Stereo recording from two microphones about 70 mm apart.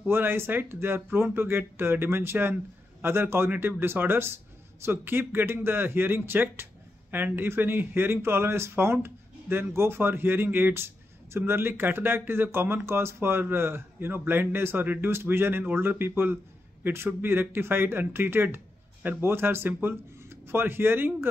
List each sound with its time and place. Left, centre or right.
0.1 s speech: right